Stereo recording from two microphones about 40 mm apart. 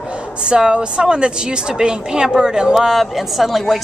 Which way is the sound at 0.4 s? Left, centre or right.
Right.